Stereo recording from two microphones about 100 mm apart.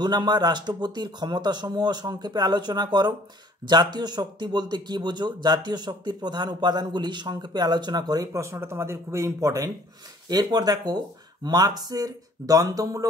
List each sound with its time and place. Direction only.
0.0 s speech: 45° right (ahead or behind)